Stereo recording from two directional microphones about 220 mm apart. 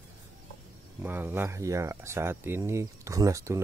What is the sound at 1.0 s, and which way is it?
Speech, 10° right (ahead or behind).